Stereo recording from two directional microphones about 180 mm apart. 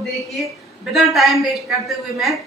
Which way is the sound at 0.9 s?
Centre (ahead or behind).